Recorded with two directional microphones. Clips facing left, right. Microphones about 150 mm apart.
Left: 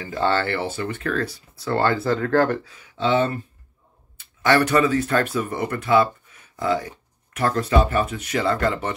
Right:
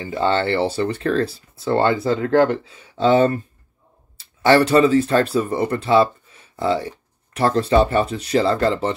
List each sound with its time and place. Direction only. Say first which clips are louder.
0.0 s speech: right 2 dB; 20° right (ahead or behind)
3.0 s speech: right 5 dB; 40° right (ahead or behind)
4.2 s speech: right 4 dB; 30° right (ahead or behind)